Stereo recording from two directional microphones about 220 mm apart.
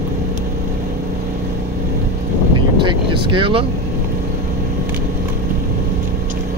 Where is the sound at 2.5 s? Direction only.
20° right (ahead or behind).